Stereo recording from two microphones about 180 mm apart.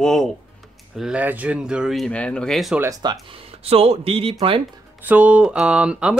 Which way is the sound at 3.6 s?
35° right (ahead or behind).